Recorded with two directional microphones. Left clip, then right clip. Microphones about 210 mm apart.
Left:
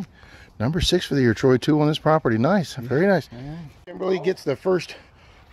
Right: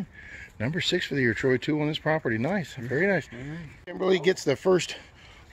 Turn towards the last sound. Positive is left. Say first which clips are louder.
# right 2 dB
turn(degrees=0)  # may be behind; listen again after turning